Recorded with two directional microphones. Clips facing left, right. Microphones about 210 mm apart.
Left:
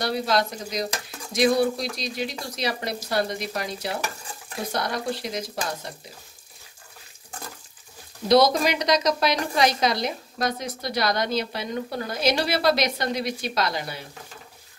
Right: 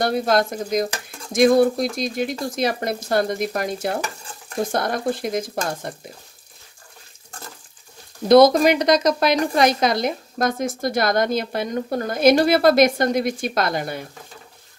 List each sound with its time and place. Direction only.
0.0 s a woman's voice: 50° right (ahead or behind)
8.3 s a woman's voice: 50° right (ahead or behind)